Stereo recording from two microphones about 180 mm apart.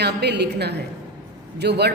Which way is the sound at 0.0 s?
65° right (ahead or behind).